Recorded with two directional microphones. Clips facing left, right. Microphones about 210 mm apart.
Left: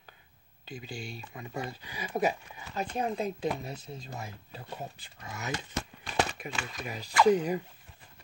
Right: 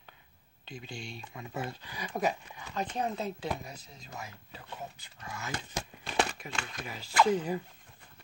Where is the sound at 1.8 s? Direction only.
10° left (ahead or behind).